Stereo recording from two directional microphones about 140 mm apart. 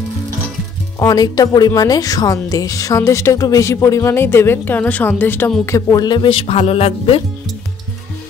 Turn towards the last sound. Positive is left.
turn(degrees=45)  # may be behind; listen again after turning